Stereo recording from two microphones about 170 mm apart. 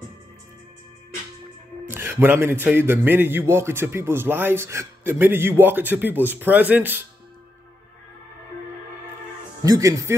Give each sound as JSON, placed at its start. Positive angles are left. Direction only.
{"t": 1.9, "sound": "a man's voice", "side_deg": -15}
{"t": 9.6, "sound": "speech", "side_deg": -20}